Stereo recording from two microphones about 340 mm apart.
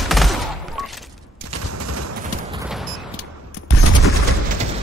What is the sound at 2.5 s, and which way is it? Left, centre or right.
Fusillade, centre.